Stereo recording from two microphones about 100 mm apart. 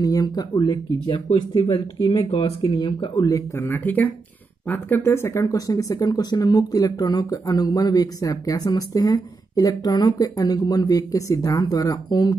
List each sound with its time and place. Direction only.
0.0 s speech: 40° left (ahead or behind); by 1.7 s 55° left (ahead or behind)
1.7 s speech: 40° left (ahead or behind)
2.3 s speech: 55° left (ahead or behind)
3.5 s speech: 20° left (ahead or behind); by 12.4 s 45° left (ahead or behind)